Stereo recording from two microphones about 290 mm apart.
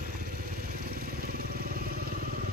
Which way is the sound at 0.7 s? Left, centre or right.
Right.